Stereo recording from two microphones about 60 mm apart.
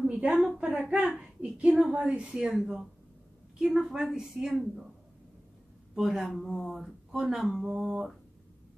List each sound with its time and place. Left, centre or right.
0.0 s a sound: centre
0.7 s speech: centre
1.4 s a woman's voice: right; by 4.8 s centre
5.9 s speech: centre